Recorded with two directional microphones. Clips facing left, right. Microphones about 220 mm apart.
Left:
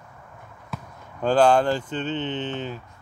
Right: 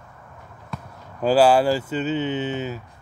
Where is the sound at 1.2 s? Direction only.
5° right (ahead or behind).